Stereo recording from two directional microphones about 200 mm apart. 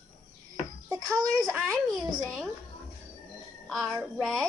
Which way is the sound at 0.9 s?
15° right (ahead or behind).